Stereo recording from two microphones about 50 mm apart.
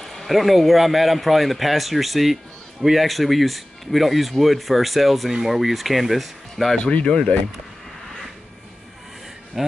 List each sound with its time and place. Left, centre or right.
0.0 s speech: centre
6.8 s speech: left
9.6 s speech: centre